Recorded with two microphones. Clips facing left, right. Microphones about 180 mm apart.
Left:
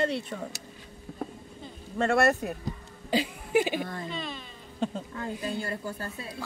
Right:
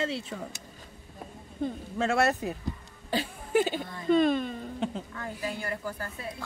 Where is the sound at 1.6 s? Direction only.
55° right (ahead or behind).